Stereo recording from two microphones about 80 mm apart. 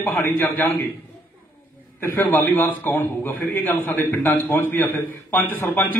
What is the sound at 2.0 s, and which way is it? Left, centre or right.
A man's voice, left.